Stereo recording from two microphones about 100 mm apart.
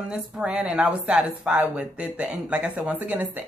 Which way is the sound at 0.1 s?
10° right (ahead or behind).